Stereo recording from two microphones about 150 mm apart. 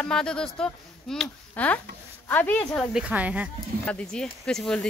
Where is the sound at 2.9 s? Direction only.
5° right (ahead or behind).